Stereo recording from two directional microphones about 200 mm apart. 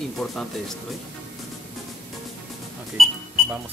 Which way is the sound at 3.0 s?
Centre (ahead or behind).